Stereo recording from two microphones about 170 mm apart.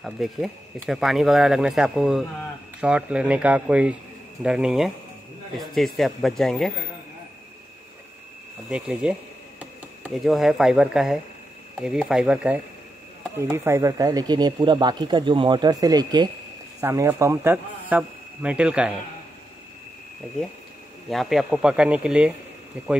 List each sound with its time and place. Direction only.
0.0 s a man's voice: centre (ahead or behind)
8.6 s a man's voice: 5° right (ahead or behind)
21.1 s speech: centre (ahead or behind)